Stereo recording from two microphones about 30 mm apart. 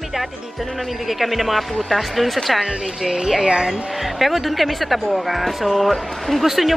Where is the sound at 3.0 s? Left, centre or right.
Right.